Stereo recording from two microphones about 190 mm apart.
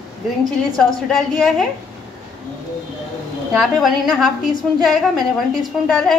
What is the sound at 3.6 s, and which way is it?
Speech, centre (ahead or behind).